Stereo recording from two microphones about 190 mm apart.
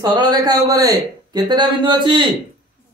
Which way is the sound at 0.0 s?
20° right (ahead or behind).